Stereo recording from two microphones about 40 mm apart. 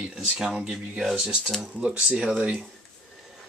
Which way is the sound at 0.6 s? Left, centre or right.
Right.